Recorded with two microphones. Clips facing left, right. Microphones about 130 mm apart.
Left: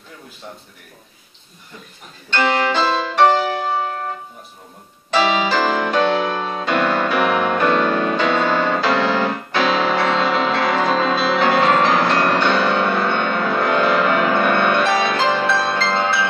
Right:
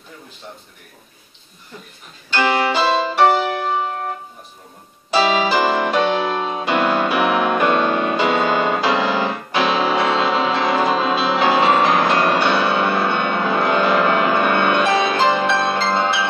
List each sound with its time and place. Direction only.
2.3 s music: 10° right (ahead or behind)
3.7 s music: 20° right (ahead or behind)
5.1 s music: 10° right (ahead or behind)